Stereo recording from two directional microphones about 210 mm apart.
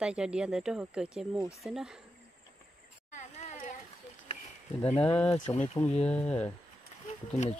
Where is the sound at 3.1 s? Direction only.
35° left (ahead or behind).